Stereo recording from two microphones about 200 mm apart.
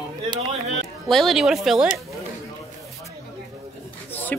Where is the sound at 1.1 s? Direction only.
Centre (ahead or behind).